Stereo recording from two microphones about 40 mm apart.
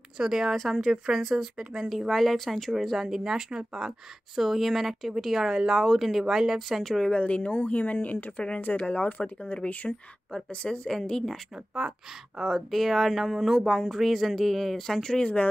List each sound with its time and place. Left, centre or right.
0.2 s speech: centre
1.9 s speech: centre
4.4 s speech: centre
6.8 s speech: centre
7.1 s speech: left
10.5 s speech: left
11.5 s speech: centre
12.4 s speech: centre